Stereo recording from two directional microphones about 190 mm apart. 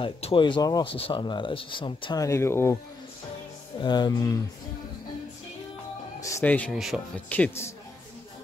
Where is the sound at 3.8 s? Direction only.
20° left (ahead or behind).